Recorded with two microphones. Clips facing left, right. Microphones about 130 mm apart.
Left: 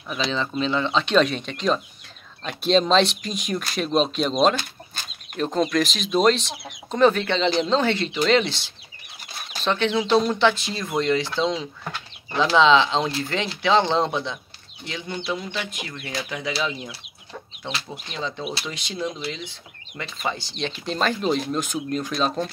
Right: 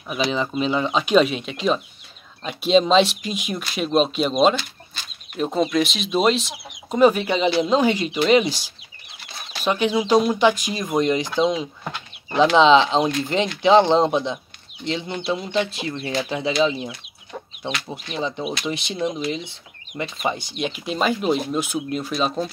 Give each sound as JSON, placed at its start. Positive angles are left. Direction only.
{"t": 0.3, "sound": "speech", "side_deg": -10}
{"t": 4.6, "sound": "chicken", "side_deg": 50}
{"t": 5.4, "sound": "speech", "side_deg": -5}